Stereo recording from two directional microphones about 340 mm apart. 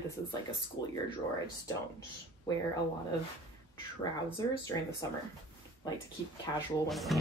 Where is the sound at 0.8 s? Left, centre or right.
Left.